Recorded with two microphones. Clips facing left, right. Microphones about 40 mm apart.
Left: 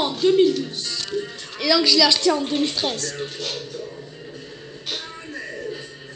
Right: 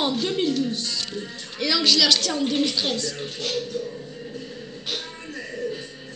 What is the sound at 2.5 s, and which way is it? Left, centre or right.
A woman's voice, left.